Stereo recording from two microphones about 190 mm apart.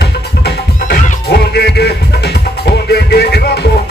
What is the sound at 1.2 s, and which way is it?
Music, 60° left (ahead or behind).